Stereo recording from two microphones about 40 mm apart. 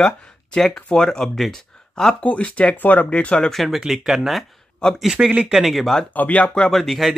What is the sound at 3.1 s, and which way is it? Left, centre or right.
Speech, left.